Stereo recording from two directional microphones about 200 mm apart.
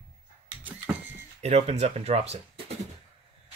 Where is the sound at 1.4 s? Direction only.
30° right (ahead or behind).